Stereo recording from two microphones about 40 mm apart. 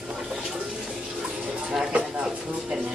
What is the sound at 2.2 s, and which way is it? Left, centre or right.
Speech, centre.